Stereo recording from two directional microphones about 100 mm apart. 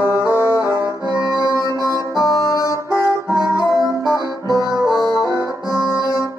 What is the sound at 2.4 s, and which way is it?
Brass instrument, 35° left (ahead or behind).